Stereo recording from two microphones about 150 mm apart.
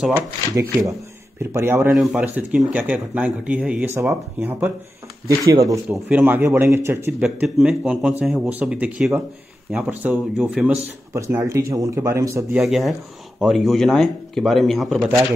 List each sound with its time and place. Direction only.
0.1 s speech: 20° right (ahead or behind)
1.9 s speech: 5° right (ahead or behind); by 5.8 s 20° right (ahead or behind)
5.9 s speech: 10° right (ahead or behind)
7.1 s speech: 5° right (ahead or behind)
11.1 s speech: 20° right (ahead or behind)
12.5 s speech: centre (ahead or behind)